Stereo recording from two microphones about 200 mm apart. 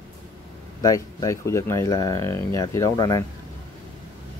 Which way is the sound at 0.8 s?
15° left (ahead or behind).